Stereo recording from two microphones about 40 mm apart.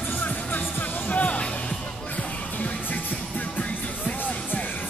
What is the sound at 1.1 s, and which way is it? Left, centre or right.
Music, left.